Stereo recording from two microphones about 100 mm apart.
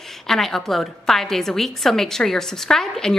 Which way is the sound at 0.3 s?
5° left (ahead or behind).